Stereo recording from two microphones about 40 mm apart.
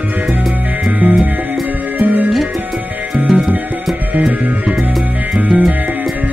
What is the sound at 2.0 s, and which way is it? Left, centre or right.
Music, right.